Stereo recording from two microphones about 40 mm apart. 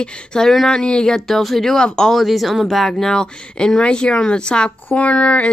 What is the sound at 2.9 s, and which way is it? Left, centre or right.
Speech, centre.